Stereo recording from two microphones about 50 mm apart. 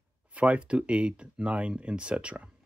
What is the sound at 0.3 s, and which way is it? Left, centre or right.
Speech, right.